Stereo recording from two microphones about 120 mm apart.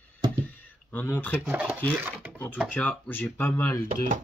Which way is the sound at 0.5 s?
15° left (ahead or behind).